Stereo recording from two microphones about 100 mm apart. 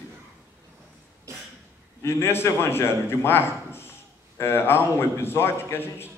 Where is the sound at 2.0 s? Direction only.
25° left (ahead or behind).